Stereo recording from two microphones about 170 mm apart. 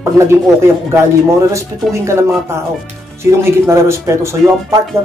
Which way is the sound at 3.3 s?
15° right (ahead or behind).